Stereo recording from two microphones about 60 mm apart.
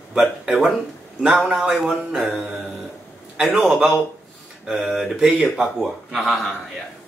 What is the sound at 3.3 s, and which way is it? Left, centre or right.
Speech, centre.